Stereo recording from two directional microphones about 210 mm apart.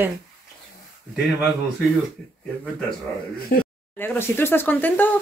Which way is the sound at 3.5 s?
45° left (ahead or behind).